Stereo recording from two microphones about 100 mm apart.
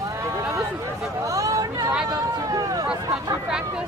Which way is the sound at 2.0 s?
35° right (ahead or behind).